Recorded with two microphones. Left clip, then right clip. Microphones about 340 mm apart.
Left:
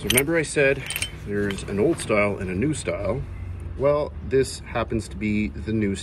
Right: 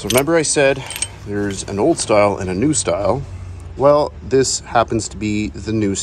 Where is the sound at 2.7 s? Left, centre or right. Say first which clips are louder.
Right 11 dB; centre.